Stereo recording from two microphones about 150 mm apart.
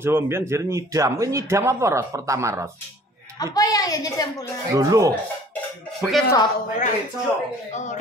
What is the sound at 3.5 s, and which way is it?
Speech, 25° left (ahead or behind).